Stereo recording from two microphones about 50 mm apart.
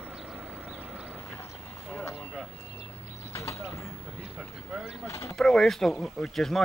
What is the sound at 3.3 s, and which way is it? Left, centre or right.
Mechanisms, left.